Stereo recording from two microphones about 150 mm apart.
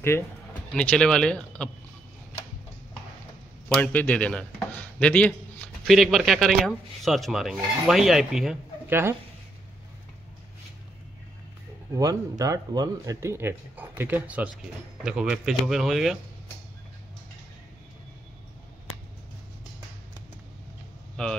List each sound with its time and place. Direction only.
0.0 s speech: 15° left (ahead or behind)
3.6 s speech: 10° left (ahead or behind)
8.8 s speech: 15° right (ahead or behind)
11.9 s speech: 20° right (ahead or behind); by 16.2 s centre (ahead or behind)
21.2 s speech: 5° left (ahead or behind)